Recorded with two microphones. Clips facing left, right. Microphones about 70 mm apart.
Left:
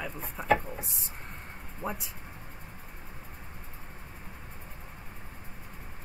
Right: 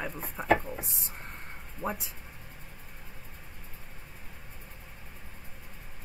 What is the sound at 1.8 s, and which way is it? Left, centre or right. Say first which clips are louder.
Speech: right 2 dB; left.